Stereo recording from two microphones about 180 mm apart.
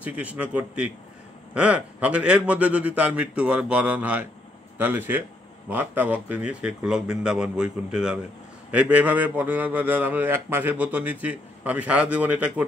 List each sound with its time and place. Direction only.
0.0 s a man's voice: 10° right (ahead or behind)